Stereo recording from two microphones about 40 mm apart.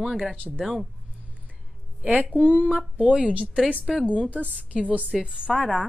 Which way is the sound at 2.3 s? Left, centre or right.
Right.